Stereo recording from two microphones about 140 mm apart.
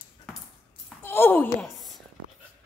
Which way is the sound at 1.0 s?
15° left (ahead or behind).